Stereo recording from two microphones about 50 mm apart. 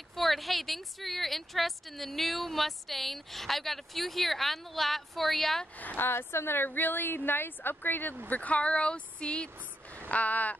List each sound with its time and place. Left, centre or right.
0.1 s a woman's voice: centre
5.9 s a woman's voice: left
8.3 s a woman's voice: left